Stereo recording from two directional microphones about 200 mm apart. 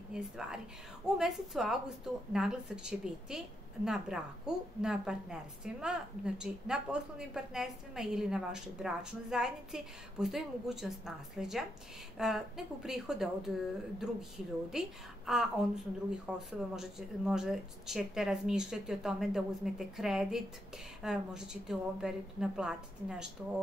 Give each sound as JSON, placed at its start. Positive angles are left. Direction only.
{"t": 0.1, "sound": "a woman's voice", "side_deg": -5}
{"t": 14.7, "sound": "a woman's voice", "side_deg": 0}